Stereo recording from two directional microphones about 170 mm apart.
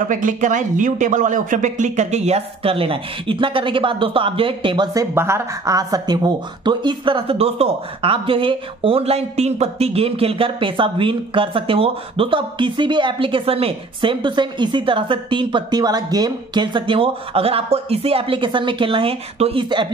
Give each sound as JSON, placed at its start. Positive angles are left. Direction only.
{"t": 0.1, "sound": "speech", "side_deg": -50}
{"t": 5.1, "sound": "speech", "side_deg": -15}